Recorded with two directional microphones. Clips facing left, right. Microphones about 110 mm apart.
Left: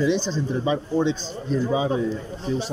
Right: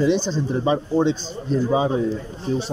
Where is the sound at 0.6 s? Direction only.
40° right (ahead or behind).